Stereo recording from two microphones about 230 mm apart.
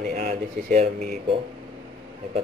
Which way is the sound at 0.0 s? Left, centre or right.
Right.